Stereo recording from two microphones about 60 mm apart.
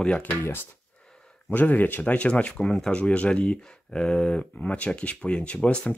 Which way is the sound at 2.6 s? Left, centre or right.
Centre.